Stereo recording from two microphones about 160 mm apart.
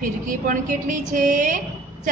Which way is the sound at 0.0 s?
55° right (ahead or behind).